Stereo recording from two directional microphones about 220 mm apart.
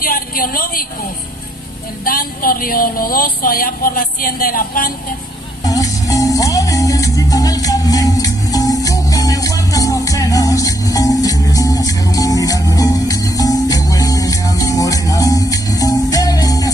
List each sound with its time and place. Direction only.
0.0 s a woman's voice: 40° left (ahead or behind)
2.0 s a sound: 40° left (ahead or behind)
5.6 s music: 15° left (ahead or behind)